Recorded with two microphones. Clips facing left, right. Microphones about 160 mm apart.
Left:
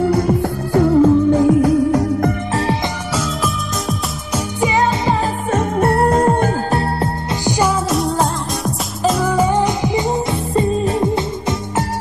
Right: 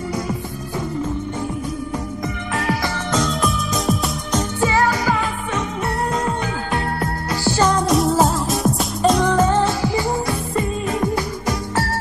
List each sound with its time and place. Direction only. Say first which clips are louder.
0.0 s music: left 10 dB; 60° left (ahead or behind)
2.5 s music: left 3 dB; 30° left (ahead or behind)
3.2 s music: right 1 dB; 5° left (ahead or behind)
4.6 s music: left 3 dB; 20° left (ahead or behind)
5.5 s music: left 8 dB; 50° left (ahead or behind)
7.4 s music: left 1 dB; 15° left (ahead or behind)
7.9 s music: right 1 dB; centre (ahead or behind); by 11.8 s 25° left (ahead or behind)